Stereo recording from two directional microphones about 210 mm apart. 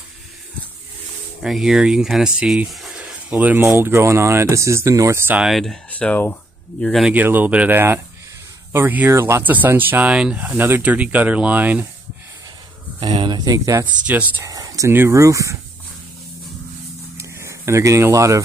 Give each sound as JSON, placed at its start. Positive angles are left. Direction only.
{"t": 1.4, "sound": "speech", "side_deg": 0}
{"t": 13.0, "sound": "speech", "side_deg": -20}
{"t": 17.2, "sound": "a sound", "side_deg": -15}